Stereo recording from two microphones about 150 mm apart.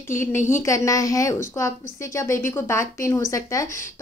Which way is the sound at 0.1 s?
15° left (ahead or behind).